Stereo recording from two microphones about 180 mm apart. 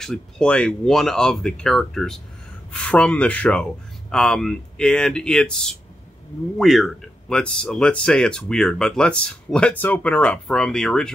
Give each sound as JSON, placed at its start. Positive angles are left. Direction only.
{"t": 0.0, "sound": "speech", "side_deg": 5}